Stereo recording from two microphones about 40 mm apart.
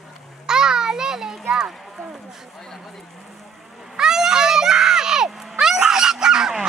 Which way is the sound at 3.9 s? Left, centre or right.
Centre.